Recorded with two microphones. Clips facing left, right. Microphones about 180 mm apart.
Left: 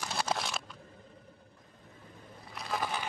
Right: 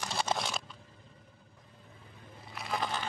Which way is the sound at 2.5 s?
Centre (ahead or behind).